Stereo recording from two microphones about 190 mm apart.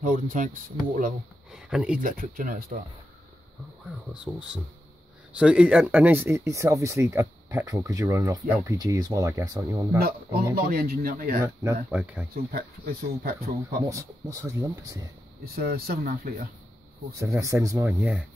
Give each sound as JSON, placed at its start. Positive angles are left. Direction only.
{"t": 0.0, "sound": "speech", "side_deg": -45}
{"t": 1.5, "sound": "speech", "side_deg": -5}
{"t": 2.0, "sound": "speech", "side_deg": -45}
{"t": 4.1, "sound": "speech", "side_deg": -5}
{"t": 9.9, "sound": "speech", "side_deg": -55}
{"t": 11.4, "sound": "speech", "side_deg": -10}
{"t": 12.4, "sound": "speech", "side_deg": -50}
{"t": 13.8, "sound": "speech", "side_deg": -15}
{"t": 15.4, "sound": "speech", "side_deg": -55}
{"t": 17.2, "sound": "speech", "side_deg": -15}